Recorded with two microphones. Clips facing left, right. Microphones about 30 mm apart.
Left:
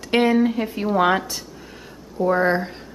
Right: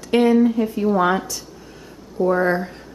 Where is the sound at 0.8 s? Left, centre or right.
Left.